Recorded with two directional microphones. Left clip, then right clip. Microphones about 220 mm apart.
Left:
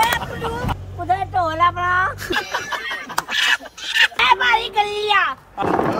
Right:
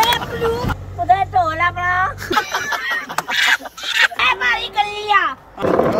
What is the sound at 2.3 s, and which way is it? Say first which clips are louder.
Snicker: right 4 dB; 20° right (ahead or behind).